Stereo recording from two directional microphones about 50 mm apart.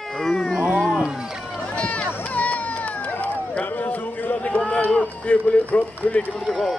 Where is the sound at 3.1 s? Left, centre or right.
Left.